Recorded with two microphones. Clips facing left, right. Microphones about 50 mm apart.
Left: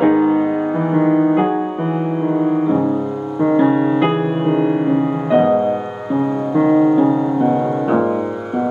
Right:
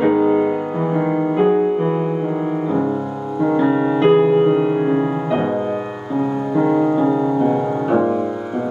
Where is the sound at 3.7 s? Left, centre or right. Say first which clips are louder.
Even; centre.